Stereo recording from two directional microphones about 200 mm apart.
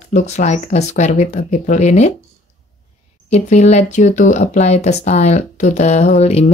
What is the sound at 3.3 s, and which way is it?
Speech, 35° left (ahead or behind).